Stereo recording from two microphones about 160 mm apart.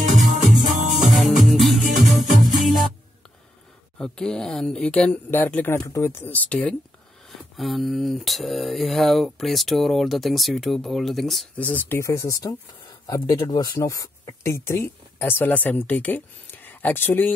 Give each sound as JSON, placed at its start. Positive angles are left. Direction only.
{"t": 0.4, "sound": "music", "side_deg": -50}
{"t": 1.2, "sound": "music", "side_deg": 0}
{"t": 4.0, "sound": "speech", "side_deg": 5}